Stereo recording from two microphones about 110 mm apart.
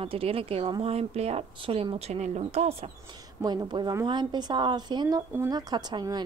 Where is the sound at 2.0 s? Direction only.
90° right.